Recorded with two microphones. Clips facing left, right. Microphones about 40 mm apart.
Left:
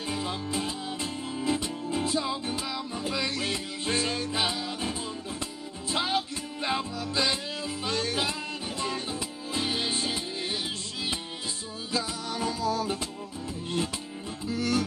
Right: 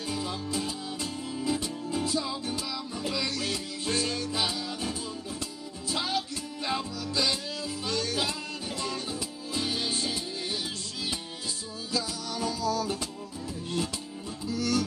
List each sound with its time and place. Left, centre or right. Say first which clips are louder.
0.1 s music: left 1 dB; left
11.9 s music: left 1 dB; left
14.5 s music: left 1 dB; left